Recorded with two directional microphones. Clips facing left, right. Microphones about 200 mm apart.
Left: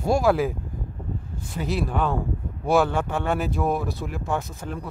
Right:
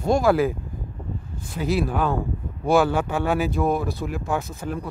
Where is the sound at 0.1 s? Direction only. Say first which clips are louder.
Right 2 dB; centre (ahead or behind).